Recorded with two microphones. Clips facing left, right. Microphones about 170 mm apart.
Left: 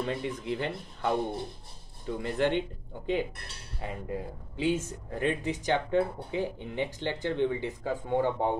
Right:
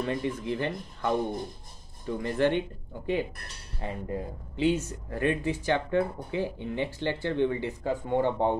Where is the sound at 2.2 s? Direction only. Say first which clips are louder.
Right 2 dB; 15° left (ahead or behind).